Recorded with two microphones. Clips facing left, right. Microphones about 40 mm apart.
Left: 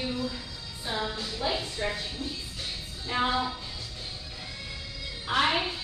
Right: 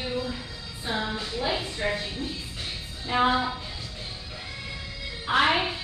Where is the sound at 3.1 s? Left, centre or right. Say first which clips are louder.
Right 4 dB; centre.